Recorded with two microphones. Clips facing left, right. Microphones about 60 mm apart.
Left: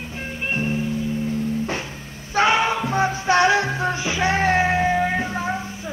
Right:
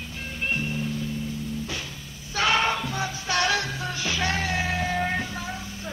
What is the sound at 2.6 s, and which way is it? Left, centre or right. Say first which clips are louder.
Music: left 4 dB; centre.